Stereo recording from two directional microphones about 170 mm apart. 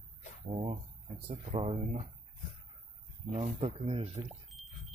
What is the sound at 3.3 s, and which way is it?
Speech, 40° right (ahead or behind).